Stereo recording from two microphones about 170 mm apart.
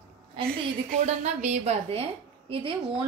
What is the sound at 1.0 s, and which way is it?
A woman's voice, 40° right (ahead or behind).